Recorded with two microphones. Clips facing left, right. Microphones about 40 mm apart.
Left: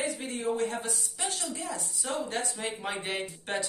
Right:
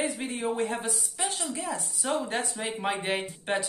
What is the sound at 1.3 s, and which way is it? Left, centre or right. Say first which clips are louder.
A man's voice: right 3 dB; centre.